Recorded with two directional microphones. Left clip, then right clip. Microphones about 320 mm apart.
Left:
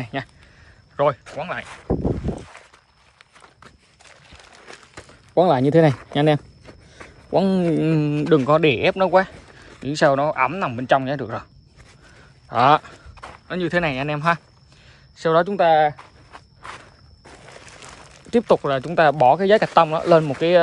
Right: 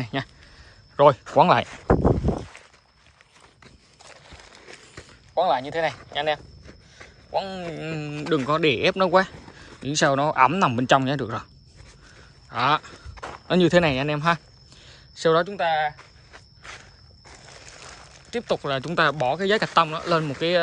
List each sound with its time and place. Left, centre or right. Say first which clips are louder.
0.0 s a man's voice: left 1 dB; centre
5.7 s speech: left 9 dB; centre
12.4 s speech: left 6 dB; centre
13.2 s speech: right 5 dB; centre
14.9 s a sound: even; centre
18.5 s speech: left 4 dB; centre